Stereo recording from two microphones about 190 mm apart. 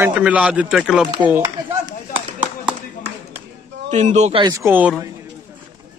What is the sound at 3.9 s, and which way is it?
Speech, 40° right (ahead or behind).